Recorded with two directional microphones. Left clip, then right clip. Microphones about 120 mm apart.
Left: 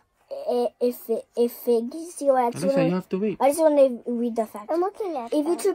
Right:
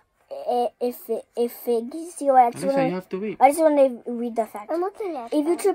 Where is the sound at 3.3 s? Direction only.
5° right (ahead or behind).